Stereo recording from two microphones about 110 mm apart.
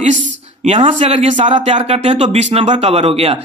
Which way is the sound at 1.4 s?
90° right.